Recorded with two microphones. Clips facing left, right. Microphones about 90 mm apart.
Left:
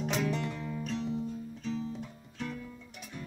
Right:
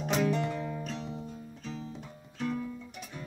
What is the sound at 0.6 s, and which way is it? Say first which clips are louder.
Music: right 2 dB; 20° right (ahead or behind).